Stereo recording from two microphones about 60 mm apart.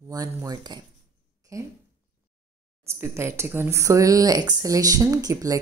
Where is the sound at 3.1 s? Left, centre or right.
Right.